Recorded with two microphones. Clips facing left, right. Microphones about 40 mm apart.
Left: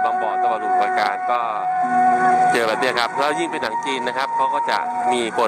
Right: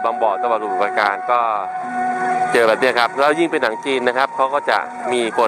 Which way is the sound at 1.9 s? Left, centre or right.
Centre.